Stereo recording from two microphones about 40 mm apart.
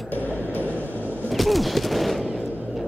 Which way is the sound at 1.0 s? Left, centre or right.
Right.